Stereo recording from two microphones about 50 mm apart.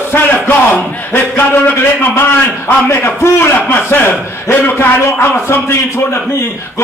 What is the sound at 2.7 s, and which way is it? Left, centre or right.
A man's voice, left.